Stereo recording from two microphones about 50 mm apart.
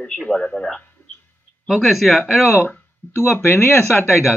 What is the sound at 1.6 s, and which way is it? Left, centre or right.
Speech, centre.